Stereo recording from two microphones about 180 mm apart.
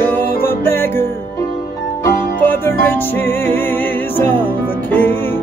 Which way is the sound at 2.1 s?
10° left (ahead or behind).